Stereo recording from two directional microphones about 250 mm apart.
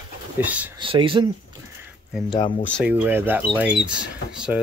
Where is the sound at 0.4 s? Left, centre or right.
Centre.